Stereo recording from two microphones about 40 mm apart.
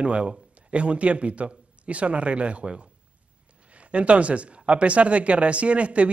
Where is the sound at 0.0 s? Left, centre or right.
Right.